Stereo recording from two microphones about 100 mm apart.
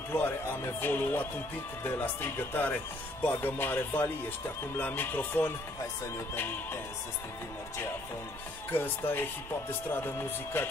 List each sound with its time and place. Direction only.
0.1 s speech: 20° left (ahead or behind)
8.7 s speech: 20° left (ahead or behind)